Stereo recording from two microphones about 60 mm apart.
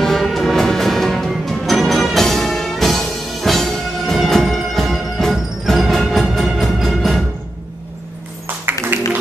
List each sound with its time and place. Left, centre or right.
0.0 s music: centre
8.6 s music: right